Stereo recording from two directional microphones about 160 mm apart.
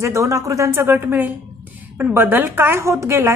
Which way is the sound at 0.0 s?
20° right (ahead or behind).